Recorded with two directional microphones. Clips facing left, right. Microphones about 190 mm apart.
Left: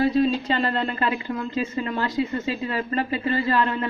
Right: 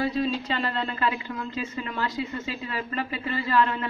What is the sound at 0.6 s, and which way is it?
Speech, 35° left (ahead or behind).